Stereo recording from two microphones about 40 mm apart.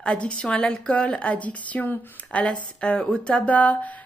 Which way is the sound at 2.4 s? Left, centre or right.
Left.